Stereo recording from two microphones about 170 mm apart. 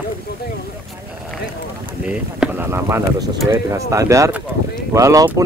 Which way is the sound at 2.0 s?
10° right (ahead or behind).